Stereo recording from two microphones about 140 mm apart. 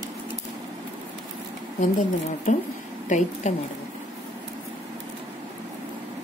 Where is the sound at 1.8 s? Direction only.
65° left (ahead or behind).